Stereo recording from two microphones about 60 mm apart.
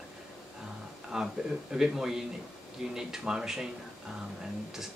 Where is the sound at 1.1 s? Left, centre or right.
Centre.